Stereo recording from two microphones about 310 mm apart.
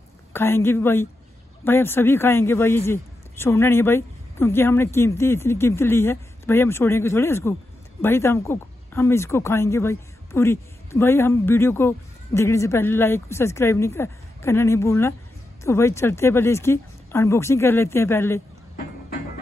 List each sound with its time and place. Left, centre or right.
0.3 s a man's voice: centre